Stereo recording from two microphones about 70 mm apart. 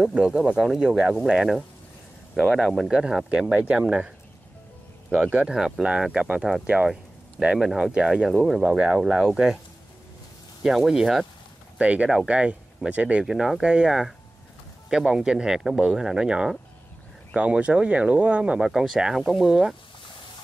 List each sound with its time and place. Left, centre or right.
0.0 s speech: centre
5.1 s speech: centre
6.9 s speech: centre
10.6 s speech: centre
11.8 s speech: centre
13.2 s speech: centre